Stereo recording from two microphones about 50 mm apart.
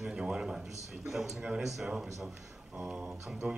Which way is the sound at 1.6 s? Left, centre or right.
Centre.